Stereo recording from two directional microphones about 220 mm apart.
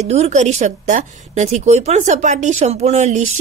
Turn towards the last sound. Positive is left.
turn(degrees=-30)  # may be behind; listen again after turning